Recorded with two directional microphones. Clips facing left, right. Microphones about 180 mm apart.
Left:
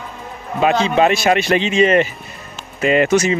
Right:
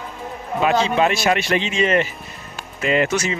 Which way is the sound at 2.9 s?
65° left (ahead or behind).